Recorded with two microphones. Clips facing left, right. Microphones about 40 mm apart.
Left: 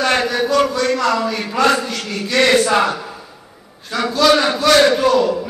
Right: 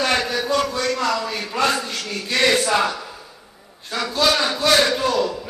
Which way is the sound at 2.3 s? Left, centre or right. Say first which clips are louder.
Left 4 dB; left.